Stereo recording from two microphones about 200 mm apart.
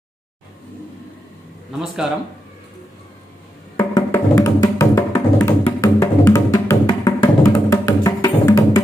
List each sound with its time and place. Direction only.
3.7 s music: 15° left (ahead or behind)